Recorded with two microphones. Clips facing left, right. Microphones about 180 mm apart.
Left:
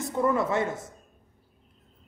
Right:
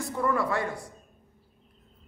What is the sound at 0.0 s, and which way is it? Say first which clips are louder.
Speech: left 2 dB; 20° left (ahead or behind).